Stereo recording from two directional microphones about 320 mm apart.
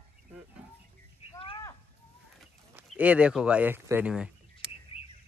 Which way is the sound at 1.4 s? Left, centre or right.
Centre.